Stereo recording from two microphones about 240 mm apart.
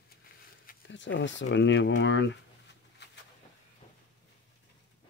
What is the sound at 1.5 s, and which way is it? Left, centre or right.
Speech, left.